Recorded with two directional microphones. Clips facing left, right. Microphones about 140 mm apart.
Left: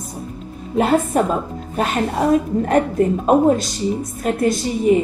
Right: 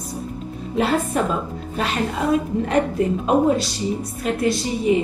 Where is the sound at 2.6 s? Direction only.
45° left (ahead or behind).